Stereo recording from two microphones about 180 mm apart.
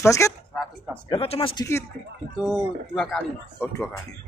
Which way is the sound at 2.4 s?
5° left (ahead or behind).